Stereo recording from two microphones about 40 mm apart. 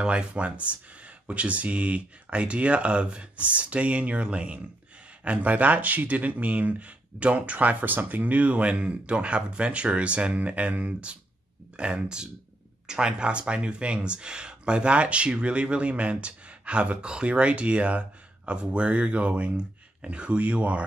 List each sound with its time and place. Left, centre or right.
0.0 s speech: right